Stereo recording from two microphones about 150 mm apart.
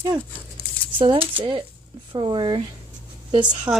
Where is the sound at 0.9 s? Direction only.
35° right (ahead or behind).